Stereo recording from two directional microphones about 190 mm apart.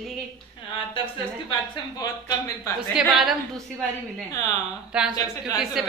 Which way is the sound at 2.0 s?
20° left (ahead or behind).